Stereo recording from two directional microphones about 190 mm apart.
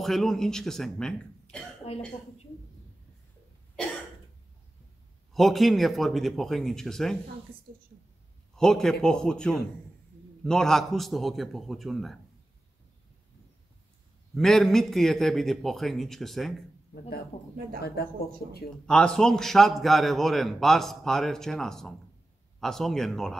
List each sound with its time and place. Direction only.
0.0 s a man's voice: centre (ahead or behind)
1.8 s speech: 35° left (ahead or behind)
5.3 s a man's voice: centre (ahead or behind)
8.5 s a man's voice: 5° left (ahead or behind)
14.3 s a man's voice: centre (ahead or behind)
18.9 s a man's voice: 5° left (ahead or behind)